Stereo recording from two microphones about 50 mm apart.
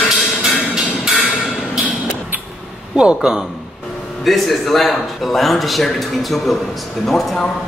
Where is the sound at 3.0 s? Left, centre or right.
Centre.